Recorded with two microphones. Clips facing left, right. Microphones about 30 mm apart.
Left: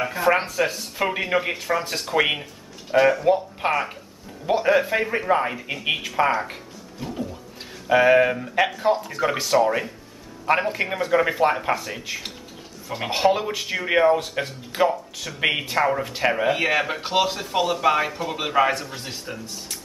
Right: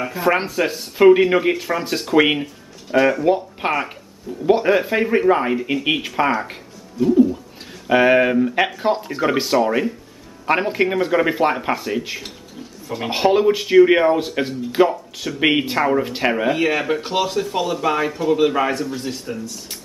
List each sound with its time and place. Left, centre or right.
0.2 s speech: centre
7.8 s speech: centre
12.8 s speech: centre
13.1 s speech: centre
16.5 s speech: centre